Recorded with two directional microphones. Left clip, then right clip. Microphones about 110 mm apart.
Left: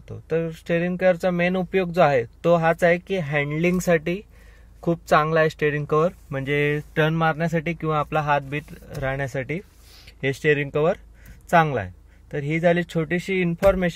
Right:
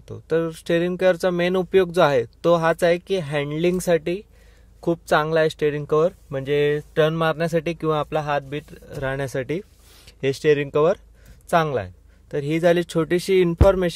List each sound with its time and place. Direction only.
0.1 s speech: 30° right (ahead or behind)
3.7 s speech: 5° right (ahead or behind); by 8.1 s 30° right (ahead or behind)
8.1 s speech: 5° right (ahead or behind)
8.9 s speech: 25° right (ahead or behind)
10.3 s speech: 20° right (ahead or behind)
11.4 s speech: centre (ahead or behind)
11.7 s speech: 25° right (ahead or behind); by 13.8 s 45° right (ahead or behind)